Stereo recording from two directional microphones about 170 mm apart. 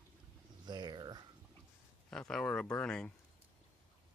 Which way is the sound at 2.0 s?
5° left (ahead or behind).